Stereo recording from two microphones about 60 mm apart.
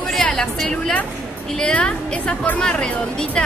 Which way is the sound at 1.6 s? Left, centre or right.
Centre.